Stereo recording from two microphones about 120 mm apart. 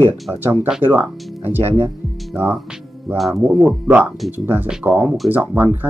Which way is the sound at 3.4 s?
15° right (ahead or behind).